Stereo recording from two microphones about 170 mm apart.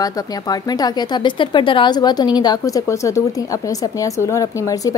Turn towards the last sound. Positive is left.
turn(degrees=20)  # may be behind; listen again after turning